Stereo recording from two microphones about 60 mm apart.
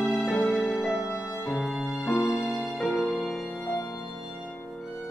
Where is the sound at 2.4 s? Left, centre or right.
Left.